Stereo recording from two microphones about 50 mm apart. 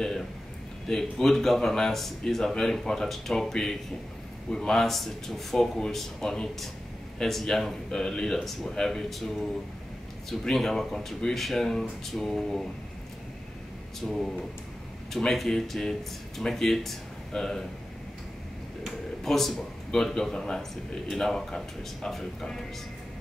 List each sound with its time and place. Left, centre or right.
0.8 s a man's voice: centre
10.4 s a man's voice: centre
14.0 s a man's voice: centre
19.2 s a man's voice: centre